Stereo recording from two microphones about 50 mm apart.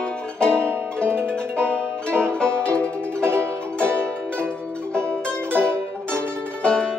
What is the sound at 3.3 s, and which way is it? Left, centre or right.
Music, right.